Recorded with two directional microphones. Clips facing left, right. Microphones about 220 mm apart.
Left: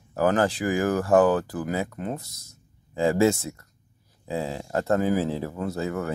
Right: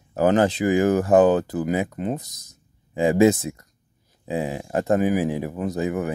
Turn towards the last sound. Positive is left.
turn(degrees=-15)  # may be behind; listen again after turning